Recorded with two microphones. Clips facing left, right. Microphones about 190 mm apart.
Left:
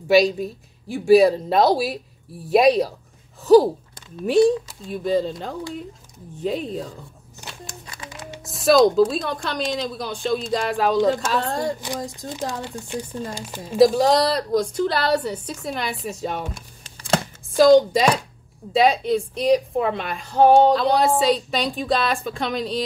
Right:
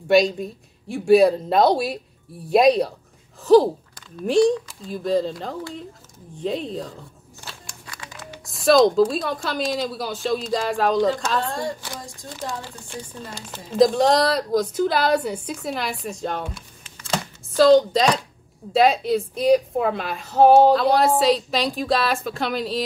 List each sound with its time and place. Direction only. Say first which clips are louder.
0.1 s speech: left 1 dB; centre (ahead or behind)
7.4 s music: left 4 dB; 20° left (ahead or behind)
8.5 s speech: even; centre (ahead or behind)
11.4 s a woman's voice: left 2 dB; 40° left (ahead or behind)
12.2 s speech: left 3 dB; 20° left (ahead or behind)
17.6 s speech: left 1 dB; 10° left (ahead or behind)
18.7 s speech: even; centre (ahead or behind)